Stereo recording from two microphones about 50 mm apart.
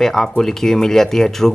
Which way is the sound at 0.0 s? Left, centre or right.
Centre.